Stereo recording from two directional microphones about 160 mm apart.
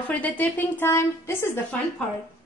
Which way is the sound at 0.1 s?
10° left (ahead or behind).